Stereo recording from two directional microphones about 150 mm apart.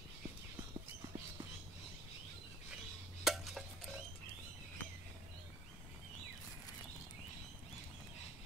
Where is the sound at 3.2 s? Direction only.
Centre (ahead or behind).